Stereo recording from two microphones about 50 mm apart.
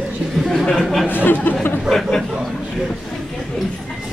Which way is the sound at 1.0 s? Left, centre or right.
Left.